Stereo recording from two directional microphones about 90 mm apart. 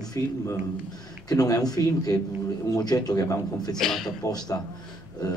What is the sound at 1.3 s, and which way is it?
Speech, 40° left (ahead or behind).